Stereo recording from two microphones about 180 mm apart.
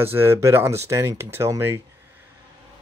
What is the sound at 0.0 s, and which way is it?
Speech, 15° right (ahead or behind).